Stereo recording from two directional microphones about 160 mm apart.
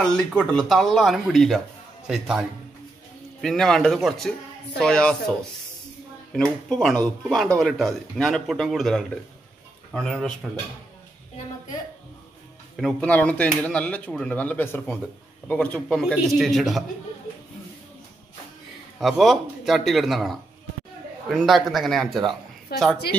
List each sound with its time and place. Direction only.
0.1 s speech: 5° left (ahead or behind)
12.7 s speech: 5° left (ahead or behind)
18.9 s speech: centre (ahead or behind)
22.7 s a woman's voice: 75° left (ahead or behind)